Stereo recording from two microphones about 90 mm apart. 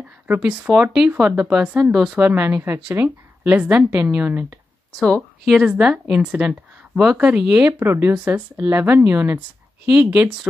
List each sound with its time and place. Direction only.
0.0 s a woman's voice: 15° right (ahead or behind)
4.9 s speech: 10° left (ahead or behind)
5.4 s a woman's voice: 5° right (ahead or behind)